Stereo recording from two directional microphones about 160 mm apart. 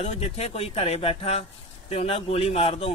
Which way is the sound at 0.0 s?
40° left (ahead or behind).